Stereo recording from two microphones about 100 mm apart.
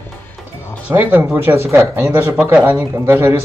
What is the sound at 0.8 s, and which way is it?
Speech, 15° right (ahead or behind).